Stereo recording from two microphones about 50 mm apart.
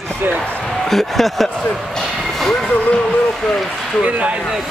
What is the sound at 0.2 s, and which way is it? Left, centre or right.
Speech, right.